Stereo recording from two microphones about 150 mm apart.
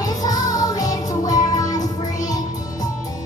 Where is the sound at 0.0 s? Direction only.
25° left (ahead or behind).